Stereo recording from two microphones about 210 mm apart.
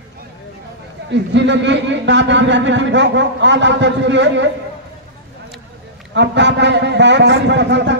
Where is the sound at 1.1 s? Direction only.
55° right (ahead or behind).